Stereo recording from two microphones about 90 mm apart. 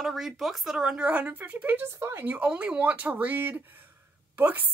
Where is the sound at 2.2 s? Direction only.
15° right (ahead or behind).